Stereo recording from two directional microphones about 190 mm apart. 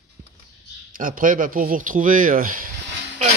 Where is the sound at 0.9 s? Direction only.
45° right (ahead or behind).